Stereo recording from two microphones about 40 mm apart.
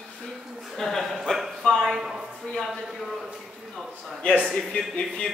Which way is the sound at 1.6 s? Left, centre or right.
Centre.